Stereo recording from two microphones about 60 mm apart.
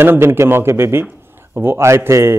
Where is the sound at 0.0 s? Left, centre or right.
Right.